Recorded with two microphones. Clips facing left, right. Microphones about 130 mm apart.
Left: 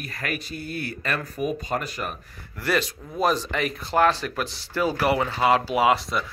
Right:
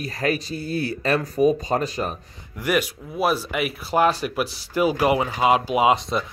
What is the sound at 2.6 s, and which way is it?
Speech, 15° right (ahead or behind).